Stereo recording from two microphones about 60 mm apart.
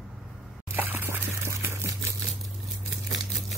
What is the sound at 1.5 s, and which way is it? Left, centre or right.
Camera, right.